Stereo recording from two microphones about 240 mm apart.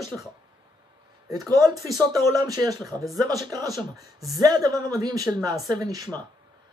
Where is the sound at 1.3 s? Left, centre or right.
Centre.